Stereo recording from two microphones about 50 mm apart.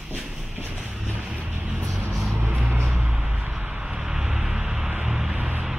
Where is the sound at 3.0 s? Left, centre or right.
Right.